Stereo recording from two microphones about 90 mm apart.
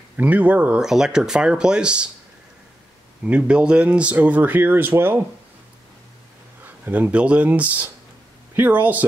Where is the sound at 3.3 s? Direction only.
15° right (ahead or behind).